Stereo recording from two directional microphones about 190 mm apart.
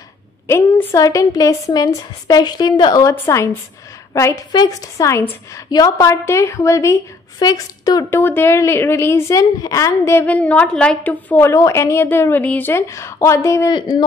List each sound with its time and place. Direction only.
0.5 s a woman's voice: 15° left (ahead or behind)